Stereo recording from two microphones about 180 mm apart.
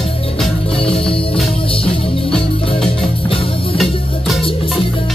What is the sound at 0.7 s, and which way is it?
Music, 30° left (ahead or behind).